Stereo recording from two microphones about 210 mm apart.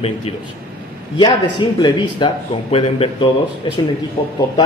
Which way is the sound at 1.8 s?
20° left (ahead or behind).